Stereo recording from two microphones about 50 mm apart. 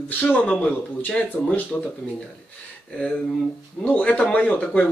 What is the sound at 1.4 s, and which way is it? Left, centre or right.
Speech, centre.